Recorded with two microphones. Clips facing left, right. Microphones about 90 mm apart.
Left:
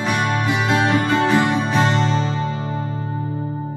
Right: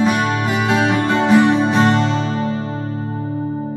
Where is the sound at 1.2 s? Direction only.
15° right (ahead or behind).